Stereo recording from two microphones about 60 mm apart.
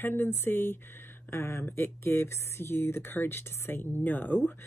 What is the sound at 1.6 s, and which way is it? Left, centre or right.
Speech, left.